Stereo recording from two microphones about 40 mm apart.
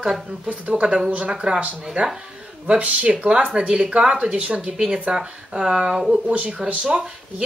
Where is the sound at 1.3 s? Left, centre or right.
Right.